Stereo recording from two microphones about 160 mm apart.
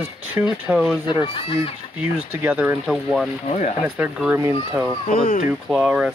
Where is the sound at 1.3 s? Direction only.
40° left (ahead or behind).